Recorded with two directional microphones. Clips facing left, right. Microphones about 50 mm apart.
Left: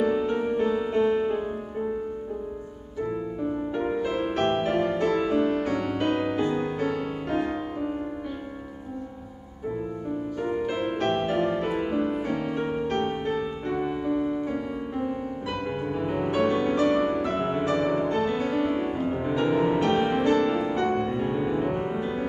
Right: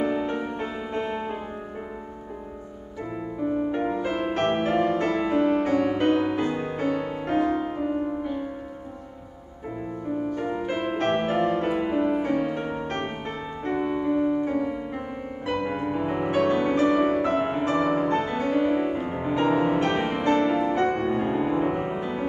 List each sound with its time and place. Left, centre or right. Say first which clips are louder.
0.0 s music: left 2 dB; right
3.7 s music: right 1 dB; right
10.7 s music: right 4 dB; right
15.5 s music: right 5 dB; right
16.0 s music: left 1 dB; centre
16.3 s music: right 1 dB; right
17.4 s music: right 1 dB; centre
19.3 s music: right 2 dB; right
21.1 s music: right 2 dB; right